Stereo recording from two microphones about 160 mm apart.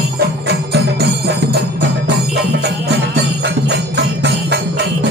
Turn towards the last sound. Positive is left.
turn(degrees=-90)